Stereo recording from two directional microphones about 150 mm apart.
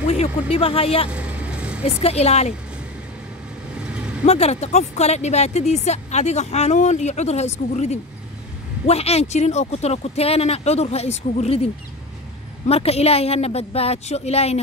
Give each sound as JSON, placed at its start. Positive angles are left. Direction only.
{"t": 0.0, "sound": "speech", "side_deg": 45}
{"t": 1.1, "sound": "vehicle", "side_deg": -10}
{"t": 2.0, "sound": "speech", "side_deg": 45}
{"t": 3.7, "sound": "vehicle", "side_deg": -5}
{"t": 4.3, "sound": "speech", "side_deg": 45}
{"t": 12.6, "sound": "speech", "side_deg": 45}